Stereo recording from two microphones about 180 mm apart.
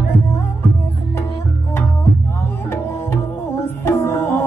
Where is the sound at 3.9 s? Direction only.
15° left (ahead or behind).